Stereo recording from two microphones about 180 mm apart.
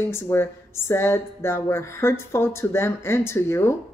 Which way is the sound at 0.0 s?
15° left (ahead or behind).